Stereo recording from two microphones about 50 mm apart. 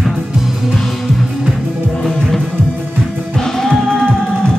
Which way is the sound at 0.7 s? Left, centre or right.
Centre.